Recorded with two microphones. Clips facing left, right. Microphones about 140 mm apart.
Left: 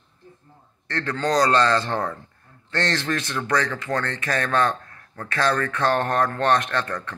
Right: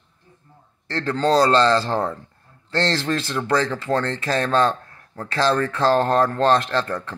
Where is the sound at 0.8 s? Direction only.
30° right (ahead or behind).